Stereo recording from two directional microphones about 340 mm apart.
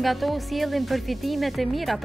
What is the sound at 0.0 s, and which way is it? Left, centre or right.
Speech, centre.